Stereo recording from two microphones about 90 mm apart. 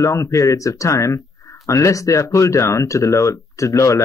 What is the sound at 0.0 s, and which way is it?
Speech, 35° left (ahead or behind).